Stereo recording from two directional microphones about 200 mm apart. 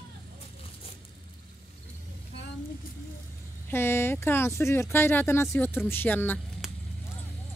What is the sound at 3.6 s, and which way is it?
Speech, 10° left (ahead or behind).